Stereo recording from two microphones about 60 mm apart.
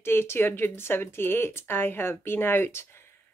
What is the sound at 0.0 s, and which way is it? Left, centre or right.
Speech, left.